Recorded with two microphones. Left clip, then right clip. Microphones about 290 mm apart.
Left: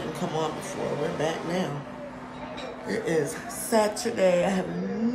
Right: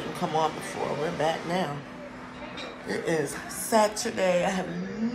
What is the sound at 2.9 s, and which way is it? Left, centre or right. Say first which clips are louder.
A woman's voice: left 1 dB; centre.